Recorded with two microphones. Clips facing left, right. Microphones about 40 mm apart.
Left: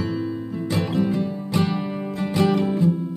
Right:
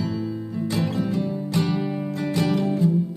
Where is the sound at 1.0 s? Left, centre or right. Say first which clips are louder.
Left 1 dB; centre.